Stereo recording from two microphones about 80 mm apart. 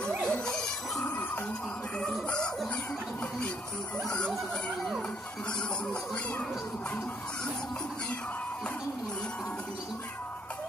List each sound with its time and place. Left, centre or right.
0.2 s music: centre
1.0 s music: left
4.0 s a sound: centre